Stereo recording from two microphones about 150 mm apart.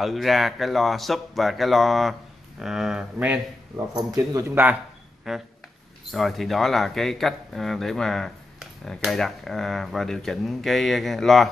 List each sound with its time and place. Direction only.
0.0 s speech: centre (ahead or behind)
3.9 s speech: 25° right (ahead or behind)
5.3 s speech: 5° right (ahead or behind)